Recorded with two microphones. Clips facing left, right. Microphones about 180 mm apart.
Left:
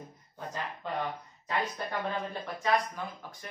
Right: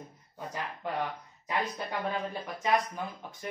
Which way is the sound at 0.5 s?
10° right (ahead or behind).